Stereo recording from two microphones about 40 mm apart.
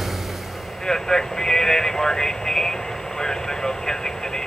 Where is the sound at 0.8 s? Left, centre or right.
Centre.